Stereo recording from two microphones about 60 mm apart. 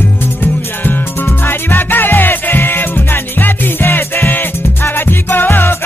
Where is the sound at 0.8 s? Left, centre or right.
Left.